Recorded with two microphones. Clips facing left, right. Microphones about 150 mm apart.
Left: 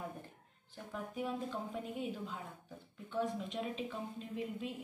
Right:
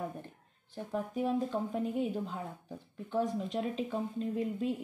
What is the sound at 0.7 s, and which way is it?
Speech, 40° right (ahead or behind).